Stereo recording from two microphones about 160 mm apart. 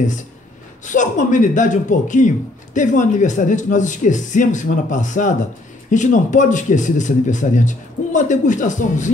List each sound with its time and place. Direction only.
0.8 s speech: 50° left (ahead or behind)